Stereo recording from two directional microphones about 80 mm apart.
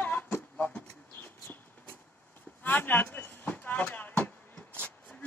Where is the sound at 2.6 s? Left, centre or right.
Left.